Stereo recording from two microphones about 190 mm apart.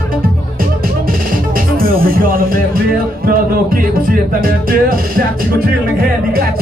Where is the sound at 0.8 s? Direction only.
50° right (ahead or behind).